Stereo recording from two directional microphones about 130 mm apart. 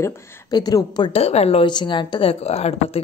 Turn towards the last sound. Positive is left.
turn(degrees=50)  # may be behind; listen again after turning